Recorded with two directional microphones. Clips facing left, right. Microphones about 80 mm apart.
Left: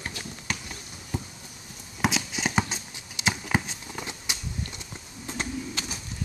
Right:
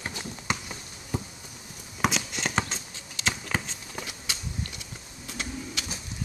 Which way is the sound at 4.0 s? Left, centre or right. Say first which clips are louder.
Left 1 dB; left.